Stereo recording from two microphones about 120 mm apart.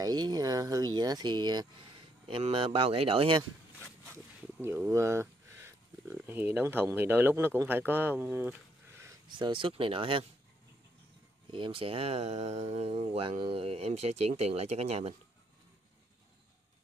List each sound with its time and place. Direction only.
0.0 s speech: 35° right (ahead or behind)
4.1 s speech: 20° right (ahead or behind)
9.3 s speech: 45° right (ahead or behind)
11.5 s speech: 45° right (ahead or behind)